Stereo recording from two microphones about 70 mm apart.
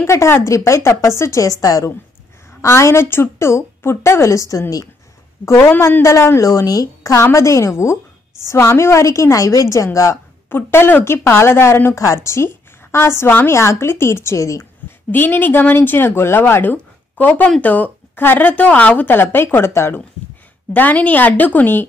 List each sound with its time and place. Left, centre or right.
0.0 s a woman's voice: left
2.6 s a woman's voice: left
5.4 s a woman's voice: left
6.0 s a woman's voice: left
10.5 s a woman's voice: left
15.0 s speech: left
16.7 s a sound: left
17.6 s speech: left
20.7 s speech: left